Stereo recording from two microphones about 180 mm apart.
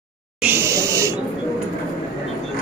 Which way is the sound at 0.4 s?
15° right (ahead or behind).